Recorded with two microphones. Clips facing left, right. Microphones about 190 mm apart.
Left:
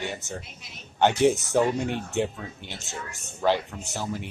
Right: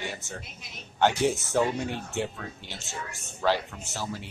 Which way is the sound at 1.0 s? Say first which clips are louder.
Left 4 dB; 20° left (ahead or behind).